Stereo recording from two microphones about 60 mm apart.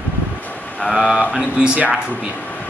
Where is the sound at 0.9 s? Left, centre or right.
Centre.